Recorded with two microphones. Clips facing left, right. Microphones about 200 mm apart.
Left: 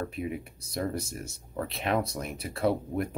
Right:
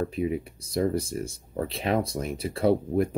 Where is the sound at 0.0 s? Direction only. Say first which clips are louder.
Right 6 dB; 30° right (ahead or behind).